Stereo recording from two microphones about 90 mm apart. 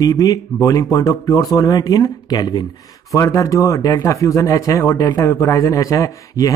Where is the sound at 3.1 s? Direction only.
35° left (ahead or behind).